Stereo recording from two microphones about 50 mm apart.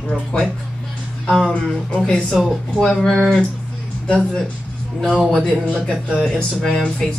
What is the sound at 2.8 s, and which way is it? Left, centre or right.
Speech, centre.